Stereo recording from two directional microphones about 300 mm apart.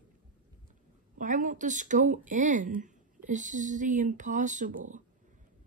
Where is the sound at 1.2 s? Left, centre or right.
Right.